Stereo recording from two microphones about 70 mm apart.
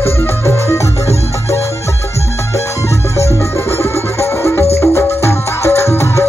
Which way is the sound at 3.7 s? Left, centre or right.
Left.